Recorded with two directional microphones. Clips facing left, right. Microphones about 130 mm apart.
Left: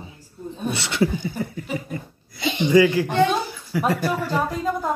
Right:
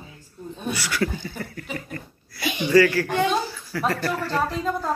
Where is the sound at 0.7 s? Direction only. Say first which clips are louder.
Left 3 dB; 25° left (ahead or behind); by 2.0 s 10° left (ahead or behind).